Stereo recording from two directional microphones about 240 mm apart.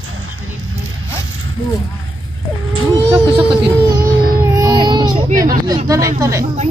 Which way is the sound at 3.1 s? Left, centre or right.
Centre.